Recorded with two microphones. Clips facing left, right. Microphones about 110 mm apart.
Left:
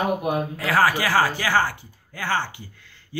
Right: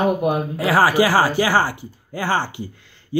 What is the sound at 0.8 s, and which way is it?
A man's voice, 10° right (ahead or behind).